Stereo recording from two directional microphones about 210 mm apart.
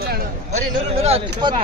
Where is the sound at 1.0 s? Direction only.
30° right (ahead or behind).